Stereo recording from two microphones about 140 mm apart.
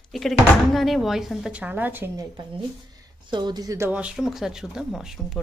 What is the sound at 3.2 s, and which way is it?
Speech, 30° right (ahead or behind).